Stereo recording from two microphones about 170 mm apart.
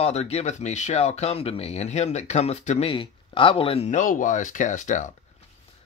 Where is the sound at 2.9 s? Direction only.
30° left (ahead or behind).